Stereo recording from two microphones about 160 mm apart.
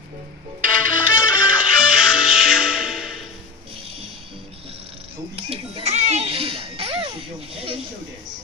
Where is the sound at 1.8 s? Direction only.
5° right (ahead or behind).